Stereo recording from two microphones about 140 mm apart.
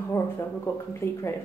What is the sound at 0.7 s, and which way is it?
Speech, 15° left (ahead or behind).